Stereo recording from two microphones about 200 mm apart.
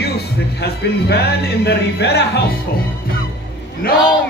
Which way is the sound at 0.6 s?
55° left (ahead or behind).